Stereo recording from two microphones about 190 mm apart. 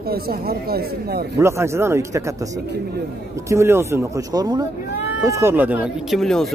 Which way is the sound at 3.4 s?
15° right (ahead or behind).